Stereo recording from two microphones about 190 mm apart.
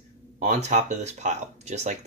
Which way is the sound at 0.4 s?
40° right (ahead or behind).